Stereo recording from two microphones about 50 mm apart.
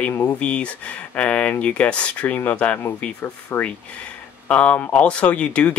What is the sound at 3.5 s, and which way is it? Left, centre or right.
Speech, left.